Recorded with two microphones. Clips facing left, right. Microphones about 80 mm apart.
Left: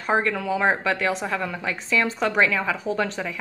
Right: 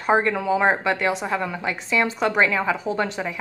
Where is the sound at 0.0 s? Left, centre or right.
Centre.